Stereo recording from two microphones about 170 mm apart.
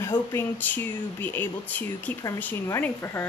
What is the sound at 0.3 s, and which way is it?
Speech, 10° left (ahead or behind).